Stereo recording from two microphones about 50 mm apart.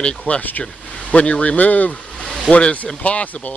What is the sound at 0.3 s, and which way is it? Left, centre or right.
Speech, left.